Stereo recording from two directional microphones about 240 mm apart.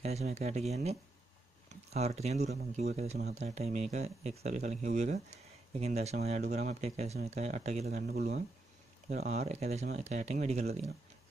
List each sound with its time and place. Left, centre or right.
0.0 s speech: right